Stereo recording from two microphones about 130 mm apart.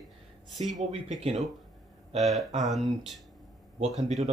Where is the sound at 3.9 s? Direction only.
60° right (ahead or behind).